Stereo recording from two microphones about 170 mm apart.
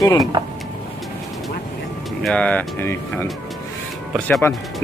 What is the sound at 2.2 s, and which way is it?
Speech, 5° left (ahead or behind).